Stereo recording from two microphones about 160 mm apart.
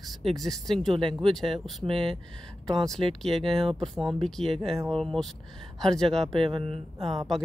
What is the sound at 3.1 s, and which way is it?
Speech, centre (ahead or behind).